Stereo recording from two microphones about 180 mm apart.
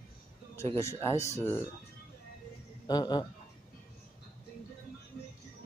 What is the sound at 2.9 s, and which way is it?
Speech, 25° left (ahead or behind).